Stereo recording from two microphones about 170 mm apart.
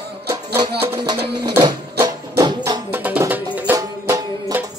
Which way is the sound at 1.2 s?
75° right (ahead or behind).